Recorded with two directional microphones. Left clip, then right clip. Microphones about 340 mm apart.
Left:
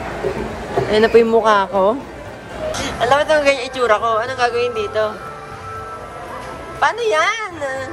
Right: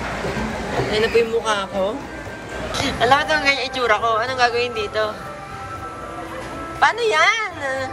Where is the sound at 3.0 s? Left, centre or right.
Centre.